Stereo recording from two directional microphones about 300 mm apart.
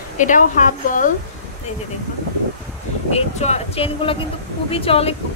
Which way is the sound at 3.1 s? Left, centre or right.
Left.